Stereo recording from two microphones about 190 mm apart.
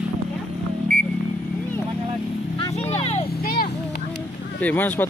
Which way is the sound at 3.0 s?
30° left (ahead or behind).